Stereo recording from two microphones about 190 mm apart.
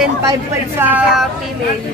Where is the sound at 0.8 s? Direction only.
10° right (ahead or behind).